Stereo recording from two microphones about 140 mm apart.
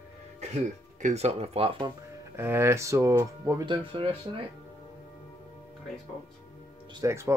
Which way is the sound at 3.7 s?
40° right (ahead or behind).